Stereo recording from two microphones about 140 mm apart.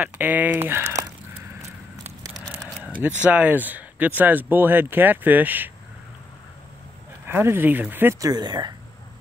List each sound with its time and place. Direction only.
0.0 s speech: 10° right (ahead or behind)
2.6 s speech: 10° right (ahead or behind)
7.2 s speech: 15° right (ahead or behind)